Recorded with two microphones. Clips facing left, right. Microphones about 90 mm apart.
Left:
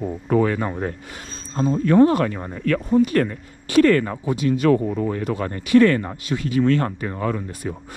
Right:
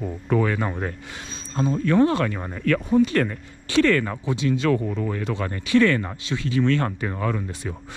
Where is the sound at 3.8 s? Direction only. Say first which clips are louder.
Left 3 dB; 45° left (ahead or behind).